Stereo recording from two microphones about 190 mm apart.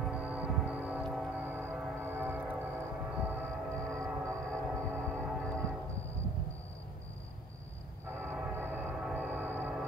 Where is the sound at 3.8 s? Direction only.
5° left (ahead or behind).